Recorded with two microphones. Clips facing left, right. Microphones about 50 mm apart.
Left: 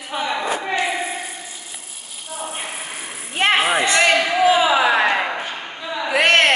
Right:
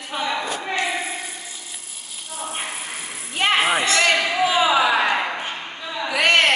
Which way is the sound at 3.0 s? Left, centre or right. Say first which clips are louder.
Left 3 dB; left.